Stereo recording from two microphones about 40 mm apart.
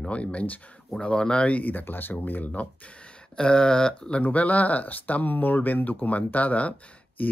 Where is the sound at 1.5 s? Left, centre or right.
Left.